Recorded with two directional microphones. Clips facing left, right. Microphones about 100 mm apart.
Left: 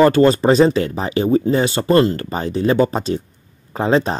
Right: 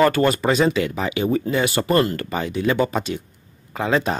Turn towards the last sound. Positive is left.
turn(degrees=30)  # may be behind; listen again after turning